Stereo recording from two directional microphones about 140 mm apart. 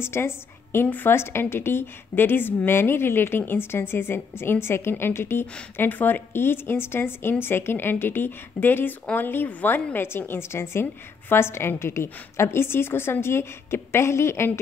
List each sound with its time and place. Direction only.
0.0 s a woman's voice: 15° left (ahead or behind)